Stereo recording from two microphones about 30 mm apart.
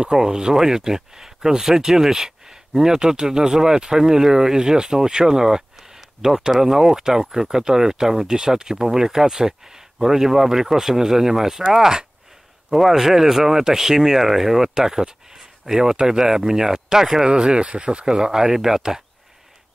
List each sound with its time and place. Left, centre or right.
0.0 s speech: right
12.6 s speech: centre
14.7 s speech: right
17.2 s speech: right
18.1 s speech: right